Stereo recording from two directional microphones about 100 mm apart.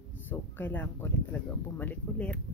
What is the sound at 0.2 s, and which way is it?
Speech, 20° left (ahead or behind).